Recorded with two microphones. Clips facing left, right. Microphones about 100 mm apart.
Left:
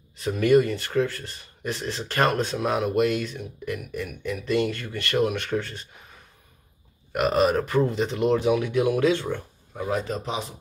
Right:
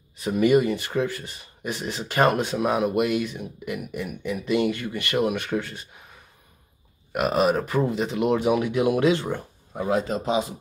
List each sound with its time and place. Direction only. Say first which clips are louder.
0.2 s speech: even; 10° right (ahead or behind)
7.1 s speech: even; 5° right (ahead or behind)
9.2 s speech: right 1 dB; 30° right (ahead or behind)